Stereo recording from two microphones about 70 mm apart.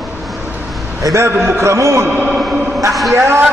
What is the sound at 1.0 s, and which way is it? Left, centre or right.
A man's voice, right.